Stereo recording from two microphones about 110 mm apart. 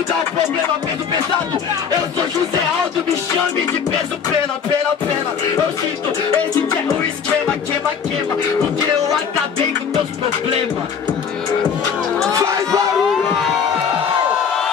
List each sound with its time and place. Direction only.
12.3 s crowd: 30° right (ahead or behind)